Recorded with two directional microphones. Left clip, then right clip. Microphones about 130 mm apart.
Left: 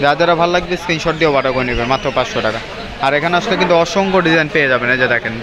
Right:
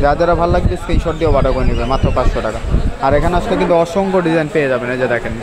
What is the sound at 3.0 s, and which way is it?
Speech, 5° right (ahead or behind).